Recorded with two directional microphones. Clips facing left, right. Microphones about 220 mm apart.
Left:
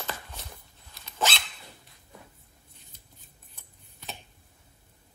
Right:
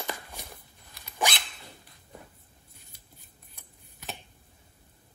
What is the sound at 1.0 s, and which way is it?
Dog, 15° right (ahead or behind).